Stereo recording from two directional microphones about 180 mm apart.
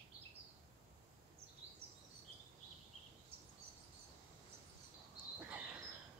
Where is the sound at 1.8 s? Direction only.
35° right (ahead or behind).